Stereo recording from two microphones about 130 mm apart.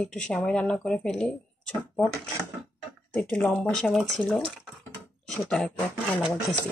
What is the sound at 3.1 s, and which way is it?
Speech, 10° left (ahead or behind).